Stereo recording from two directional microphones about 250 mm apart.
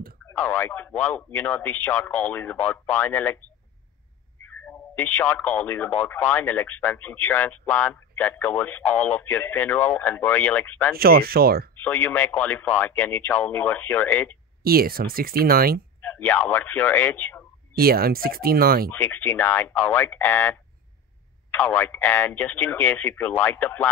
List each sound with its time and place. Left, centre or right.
0.3 s a man's voice: centre
4.6 s a man's voice: centre
11.0 s speech: right
11.8 s a man's voice: centre
14.6 s speech: right
16.0 s speech: centre
17.7 s speech: right
18.9 s a man's voice: centre